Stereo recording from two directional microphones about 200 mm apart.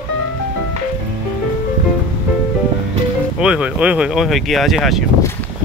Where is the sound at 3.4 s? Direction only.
5° right (ahead or behind).